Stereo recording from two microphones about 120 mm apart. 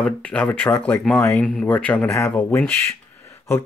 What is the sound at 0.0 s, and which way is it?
Speech, 10° left (ahead or behind).